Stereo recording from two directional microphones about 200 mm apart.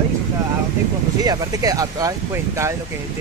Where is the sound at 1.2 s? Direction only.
15° right (ahead or behind).